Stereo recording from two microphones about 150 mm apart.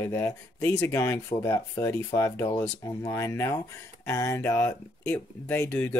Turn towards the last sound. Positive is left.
turn(degrees=10)  # may be behind; listen again after turning